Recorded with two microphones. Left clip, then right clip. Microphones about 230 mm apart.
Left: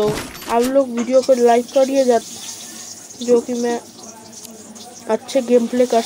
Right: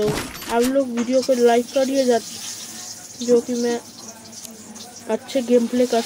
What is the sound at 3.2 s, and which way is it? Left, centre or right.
Speech, centre.